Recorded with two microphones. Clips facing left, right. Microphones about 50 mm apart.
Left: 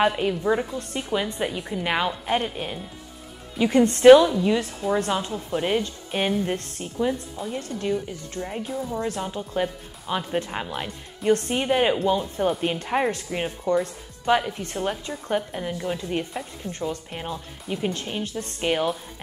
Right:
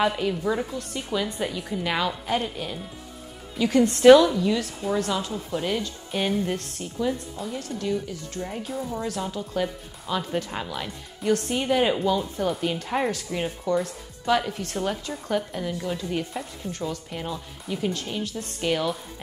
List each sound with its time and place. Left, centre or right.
0.0 s a woman's voice: centre
4.0 s a woman's voice: centre
8.4 s a woman's voice: centre
8.9 s speech: left